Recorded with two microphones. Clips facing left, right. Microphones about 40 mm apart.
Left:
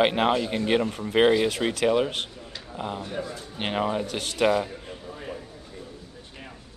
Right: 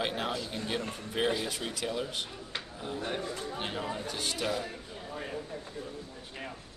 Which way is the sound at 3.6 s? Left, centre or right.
Left.